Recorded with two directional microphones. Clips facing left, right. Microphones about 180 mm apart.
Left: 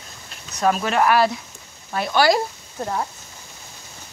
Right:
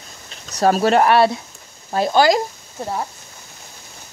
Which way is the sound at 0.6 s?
35° right (ahead or behind).